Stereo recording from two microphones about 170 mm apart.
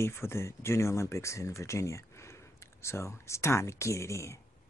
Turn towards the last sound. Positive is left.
turn(degrees=15)  # may be behind; listen again after turning